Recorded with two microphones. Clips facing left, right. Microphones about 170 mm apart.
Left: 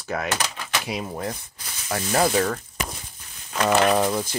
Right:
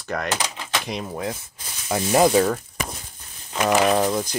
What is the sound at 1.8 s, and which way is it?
Speech, 15° right (ahead or behind).